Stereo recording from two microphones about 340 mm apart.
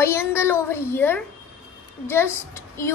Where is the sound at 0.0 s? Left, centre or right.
Centre.